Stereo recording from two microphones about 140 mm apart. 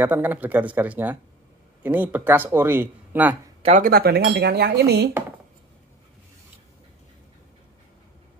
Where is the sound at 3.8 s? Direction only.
90° right.